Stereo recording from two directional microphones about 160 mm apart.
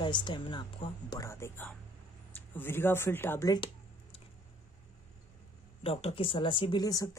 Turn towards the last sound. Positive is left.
turn(degrees=25)  # may be behind; listen again after turning